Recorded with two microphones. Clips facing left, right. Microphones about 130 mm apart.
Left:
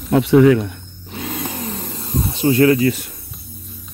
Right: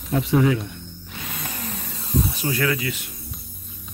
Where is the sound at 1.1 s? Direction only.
50° left (ahead or behind).